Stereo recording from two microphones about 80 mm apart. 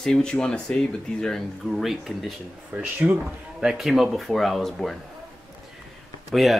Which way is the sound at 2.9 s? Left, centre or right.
Centre.